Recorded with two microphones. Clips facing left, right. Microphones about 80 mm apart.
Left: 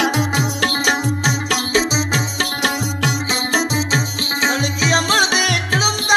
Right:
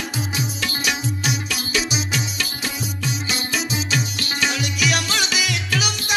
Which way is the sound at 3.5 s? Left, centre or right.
Left.